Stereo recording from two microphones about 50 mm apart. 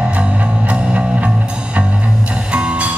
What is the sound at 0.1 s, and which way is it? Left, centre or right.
Music, right.